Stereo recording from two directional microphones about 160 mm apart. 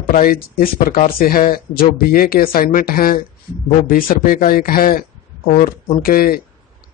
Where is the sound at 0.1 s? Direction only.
60° left (ahead or behind).